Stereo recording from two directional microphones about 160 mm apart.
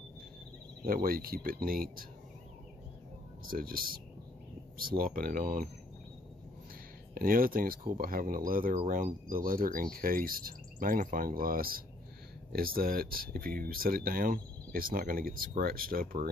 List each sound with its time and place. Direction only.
0.8 s speech: 65° right (ahead or behind)
3.4 s speech: 65° right (ahead or behind)
7.2 s speech: 65° right (ahead or behind)